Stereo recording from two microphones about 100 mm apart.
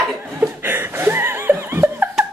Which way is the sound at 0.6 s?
25° right (ahead or behind).